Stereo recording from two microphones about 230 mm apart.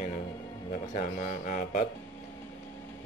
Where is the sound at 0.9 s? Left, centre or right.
Left.